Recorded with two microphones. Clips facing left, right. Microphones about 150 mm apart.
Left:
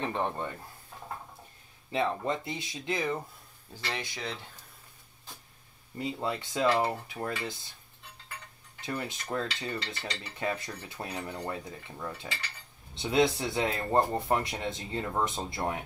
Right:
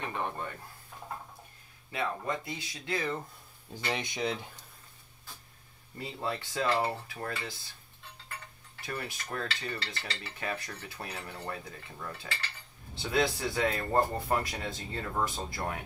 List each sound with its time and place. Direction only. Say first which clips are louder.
0.0 s dishes: left 4 dB; 30° left (ahead or behind)
1.9 s dishes: left 4 dB; 25° left (ahead or behind)
3.7 s speech: right 3 dB; 15° right (ahead or behind)
5.9 s dishes: left 3 dB; 20° left (ahead or behind)
8.8 s dishes: left 3 dB; 20° left (ahead or behind)